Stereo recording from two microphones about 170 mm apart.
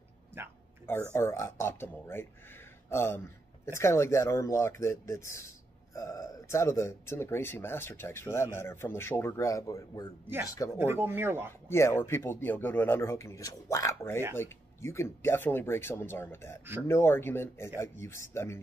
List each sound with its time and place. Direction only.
1.1 s speech: 15° left (ahead or behind)
10.8 s speech: 15° right (ahead or behind)
11.7 s speech: 15° left (ahead or behind)